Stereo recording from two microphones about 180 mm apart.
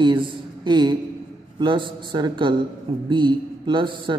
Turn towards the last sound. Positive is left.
turn(degrees=-25)  # may be behind; listen again after turning